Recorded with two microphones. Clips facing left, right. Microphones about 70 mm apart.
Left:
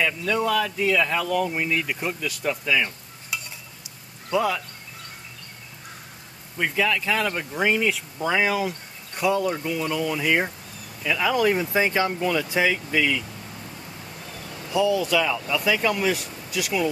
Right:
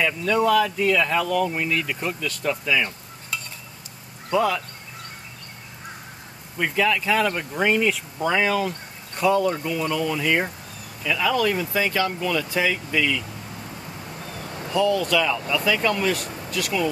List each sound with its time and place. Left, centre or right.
0.0 s speech: centre
6.6 s speech: centre
13.6 s vehicle: centre
14.3 s a sound: right
14.7 s speech: centre